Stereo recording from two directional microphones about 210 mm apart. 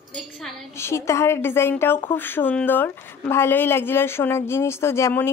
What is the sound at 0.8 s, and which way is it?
A woman's voice, 15° left (ahead or behind).